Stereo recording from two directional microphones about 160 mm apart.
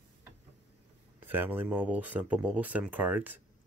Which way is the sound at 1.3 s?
10° right (ahead or behind).